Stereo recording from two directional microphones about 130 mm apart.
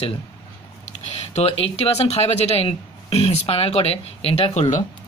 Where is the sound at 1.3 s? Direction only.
55° left (ahead or behind).